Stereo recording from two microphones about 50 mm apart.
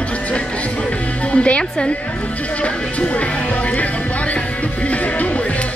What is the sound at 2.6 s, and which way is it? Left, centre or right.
Music, left.